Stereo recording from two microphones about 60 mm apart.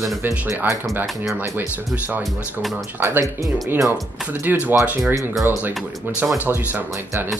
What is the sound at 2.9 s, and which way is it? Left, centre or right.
Speech, right.